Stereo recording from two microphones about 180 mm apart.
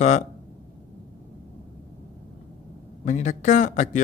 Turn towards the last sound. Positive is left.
turn(degrees=45)  # may be behind; listen again after turning